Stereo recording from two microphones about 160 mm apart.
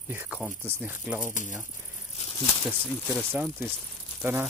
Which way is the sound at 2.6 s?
10° left (ahead or behind).